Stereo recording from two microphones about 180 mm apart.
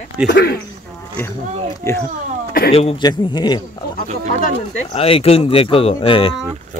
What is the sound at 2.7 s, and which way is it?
Speech, 30° left (ahead or behind).